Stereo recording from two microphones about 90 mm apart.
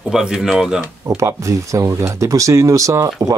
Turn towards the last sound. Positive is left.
turn(degrees=-35)  # may be behind; listen again after turning